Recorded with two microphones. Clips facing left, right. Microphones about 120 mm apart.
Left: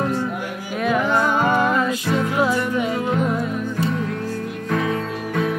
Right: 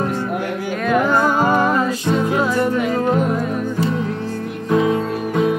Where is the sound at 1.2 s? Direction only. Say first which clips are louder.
Right 2 dB; 40° right (ahead or behind).